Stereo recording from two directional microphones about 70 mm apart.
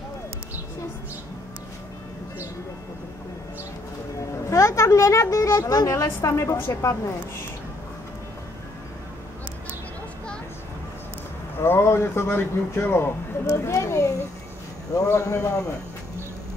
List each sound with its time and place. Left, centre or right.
4.5 s a sound: left
5.8 s a man's voice: left
11.5 s a man's voice: left